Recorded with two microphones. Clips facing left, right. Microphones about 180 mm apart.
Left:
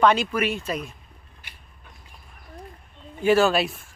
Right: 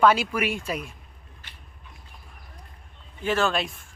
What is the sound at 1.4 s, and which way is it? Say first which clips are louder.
Mechanisms: left 1 dB; 10° left (ahead or behind).